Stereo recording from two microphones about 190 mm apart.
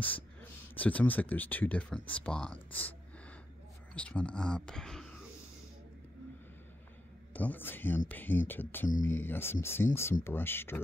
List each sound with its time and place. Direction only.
0.0 s speech: 10° left (ahead or behind)
7.3 s speech: 10° left (ahead or behind)